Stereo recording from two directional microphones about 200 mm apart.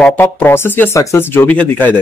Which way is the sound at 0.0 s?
10° left (ahead or behind).